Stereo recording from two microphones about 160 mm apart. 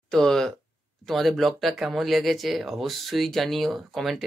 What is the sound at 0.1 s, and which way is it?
Speech, 5° left (ahead or behind).